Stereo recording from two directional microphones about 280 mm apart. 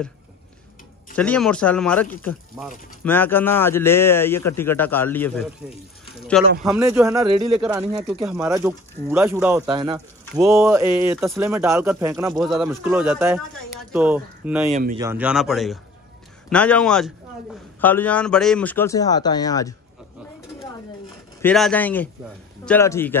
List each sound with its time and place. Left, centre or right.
1.1 s speech: centre
14.7 s speech: right
15.0 s speech: centre
21.4 s speech: centre